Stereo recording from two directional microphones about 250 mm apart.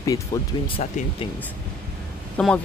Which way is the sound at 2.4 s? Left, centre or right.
Centre.